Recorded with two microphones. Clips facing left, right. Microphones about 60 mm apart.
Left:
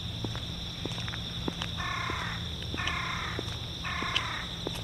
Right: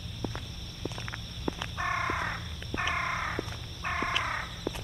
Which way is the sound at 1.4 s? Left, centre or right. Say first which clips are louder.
Right 4 dB; right.